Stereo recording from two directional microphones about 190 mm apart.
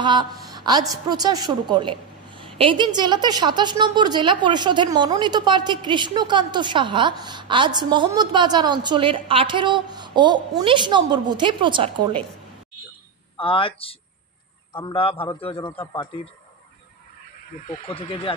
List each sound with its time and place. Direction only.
0.0 s a woman's voice: 25° right (ahead or behind)
13.4 s a man's voice: 30° left (ahead or behind)
17.6 s a man's voice: 30° left (ahead or behind)